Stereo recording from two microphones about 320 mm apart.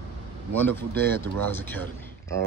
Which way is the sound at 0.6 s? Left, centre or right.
Centre.